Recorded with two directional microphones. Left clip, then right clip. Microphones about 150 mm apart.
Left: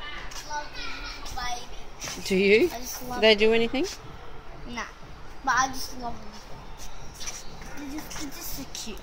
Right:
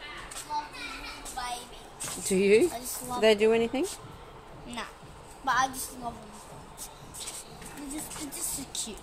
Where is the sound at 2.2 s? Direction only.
Centre (ahead or behind).